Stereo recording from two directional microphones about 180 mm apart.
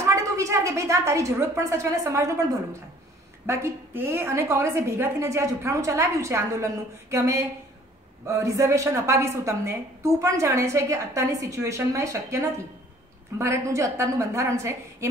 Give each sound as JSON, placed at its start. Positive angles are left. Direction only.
{"t": 0.0, "sound": "a woman's voice", "side_deg": -15}